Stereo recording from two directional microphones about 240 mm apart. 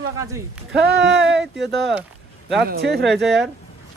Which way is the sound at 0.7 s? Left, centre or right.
Right.